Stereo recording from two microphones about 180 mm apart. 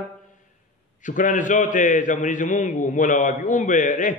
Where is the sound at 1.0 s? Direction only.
45° left (ahead or behind).